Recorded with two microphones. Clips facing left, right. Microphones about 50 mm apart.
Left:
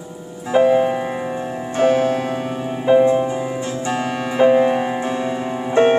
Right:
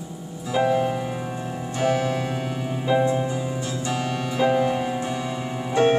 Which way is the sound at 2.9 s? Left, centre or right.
Left.